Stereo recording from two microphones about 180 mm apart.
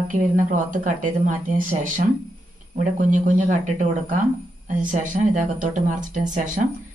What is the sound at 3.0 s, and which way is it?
A woman's voice, 45° right (ahead or behind).